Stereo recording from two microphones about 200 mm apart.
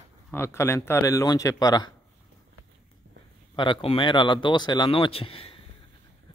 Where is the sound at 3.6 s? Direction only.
25° left (ahead or behind).